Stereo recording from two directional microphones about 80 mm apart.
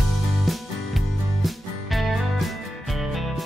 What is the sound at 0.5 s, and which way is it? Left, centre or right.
Music, centre.